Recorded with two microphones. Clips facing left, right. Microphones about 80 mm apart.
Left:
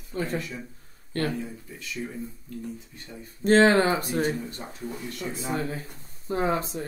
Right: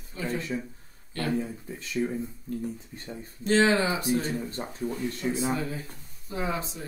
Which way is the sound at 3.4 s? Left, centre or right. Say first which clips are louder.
Left 4 dB; left.